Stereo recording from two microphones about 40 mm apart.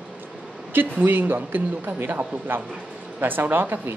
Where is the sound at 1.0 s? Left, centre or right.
Right.